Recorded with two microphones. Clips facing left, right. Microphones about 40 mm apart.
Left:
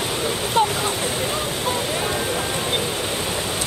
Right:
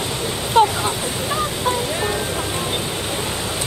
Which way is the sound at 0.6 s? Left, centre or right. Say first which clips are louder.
Right 5 dB; right.